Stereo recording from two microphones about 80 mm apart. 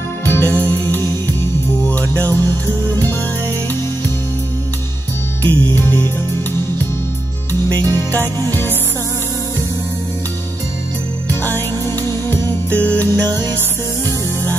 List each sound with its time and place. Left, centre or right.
0.2 s music: left
5.4 s music: left
7.9 s music: left
12.3 s music: centre
13.2 s music: right